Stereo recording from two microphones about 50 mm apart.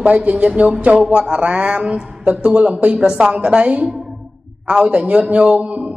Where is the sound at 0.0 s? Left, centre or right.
Right.